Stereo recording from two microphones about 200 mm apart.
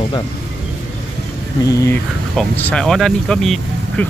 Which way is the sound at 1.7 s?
15° left (ahead or behind).